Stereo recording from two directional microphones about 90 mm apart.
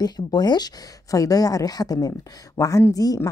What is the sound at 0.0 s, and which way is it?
A woman's voice, 50° left (ahead or behind).